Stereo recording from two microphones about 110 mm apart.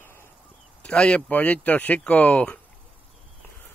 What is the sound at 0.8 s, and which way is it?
Speech, 10° left (ahead or behind).